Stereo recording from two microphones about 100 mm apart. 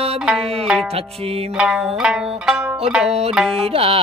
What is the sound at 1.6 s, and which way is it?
Zither, 5° right (ahead or behind).